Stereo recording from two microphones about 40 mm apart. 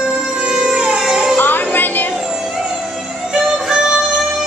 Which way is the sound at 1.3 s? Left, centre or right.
Left.